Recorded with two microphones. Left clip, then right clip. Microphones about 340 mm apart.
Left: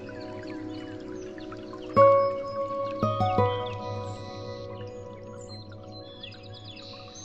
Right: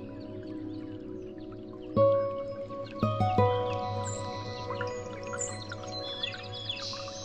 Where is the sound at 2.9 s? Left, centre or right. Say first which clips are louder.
Even; centre.